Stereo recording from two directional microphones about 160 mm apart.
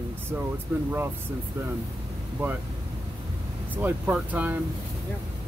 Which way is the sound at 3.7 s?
10° right (ahead or behind).